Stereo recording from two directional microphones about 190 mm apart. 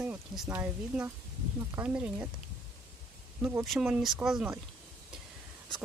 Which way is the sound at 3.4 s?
10° right (ahead or behind).